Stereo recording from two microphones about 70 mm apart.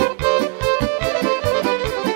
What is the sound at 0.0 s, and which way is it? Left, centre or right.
Music, right.